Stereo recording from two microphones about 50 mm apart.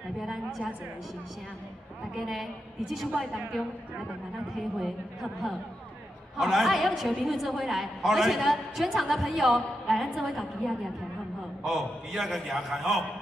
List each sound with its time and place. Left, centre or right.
0.2 s a woman's voice: centre
2.1 s a woman's voice: centre
4.7 s a woman's voice: centre